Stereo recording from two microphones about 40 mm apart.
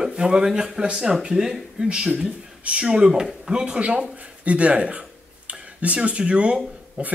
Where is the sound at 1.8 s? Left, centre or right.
Right.